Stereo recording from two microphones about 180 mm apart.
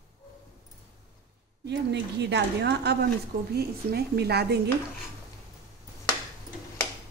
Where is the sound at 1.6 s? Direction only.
70° right (ahead or behind).